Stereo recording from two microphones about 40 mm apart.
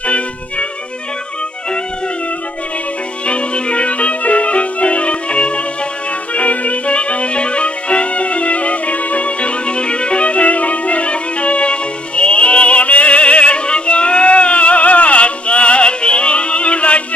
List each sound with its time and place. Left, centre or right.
0.0 s music: left
3.3 s music: left